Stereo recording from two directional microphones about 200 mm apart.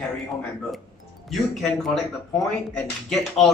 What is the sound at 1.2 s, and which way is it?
Speech, centre (ahead or behind).